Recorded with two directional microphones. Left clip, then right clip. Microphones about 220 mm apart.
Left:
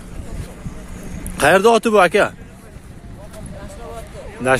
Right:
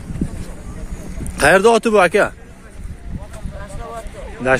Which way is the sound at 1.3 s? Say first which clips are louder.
Right 1 dB; 5° right (ahead or behind).